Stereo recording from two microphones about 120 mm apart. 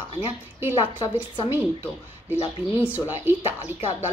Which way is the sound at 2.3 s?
15° right (ahead or behind).